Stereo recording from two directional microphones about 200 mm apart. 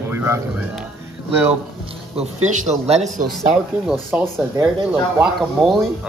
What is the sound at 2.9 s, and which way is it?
Speech, 35° right (ahead or behind).